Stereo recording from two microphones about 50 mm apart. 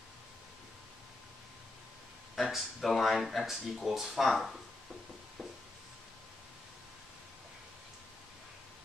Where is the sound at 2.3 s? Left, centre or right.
Centre.